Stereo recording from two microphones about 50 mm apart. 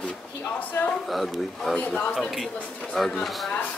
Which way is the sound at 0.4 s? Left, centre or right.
Left.